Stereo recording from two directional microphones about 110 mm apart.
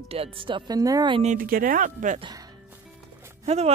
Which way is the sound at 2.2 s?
40° right (ahead or behind).